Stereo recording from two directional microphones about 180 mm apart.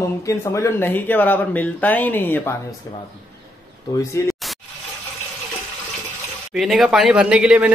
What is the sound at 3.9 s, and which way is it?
Speech, 20° left (ahead or behind).